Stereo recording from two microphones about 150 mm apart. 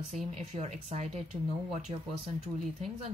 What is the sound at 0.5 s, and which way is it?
Speech, 50° right (ahead or behind).